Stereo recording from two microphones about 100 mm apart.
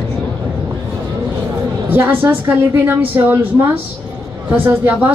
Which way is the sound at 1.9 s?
20° right (ahead or behind).